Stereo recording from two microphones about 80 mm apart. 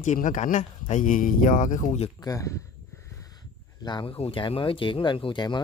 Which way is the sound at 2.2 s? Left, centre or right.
Left.